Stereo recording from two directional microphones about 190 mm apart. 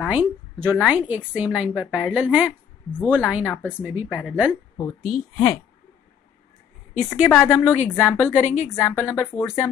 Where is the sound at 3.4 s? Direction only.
10° left (ahead or behind).